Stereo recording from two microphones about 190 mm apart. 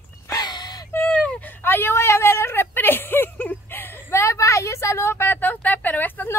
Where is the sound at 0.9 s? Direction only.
5° left (ahead or behind).